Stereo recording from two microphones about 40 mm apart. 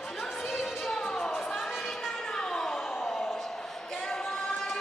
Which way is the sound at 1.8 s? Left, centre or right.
Centre.